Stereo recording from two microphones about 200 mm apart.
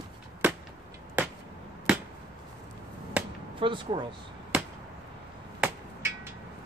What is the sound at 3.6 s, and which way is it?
Speech, 25° right (ahead or behind).